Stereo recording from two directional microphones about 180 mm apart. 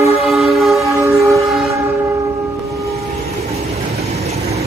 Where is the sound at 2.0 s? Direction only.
15° right (ahead or behind).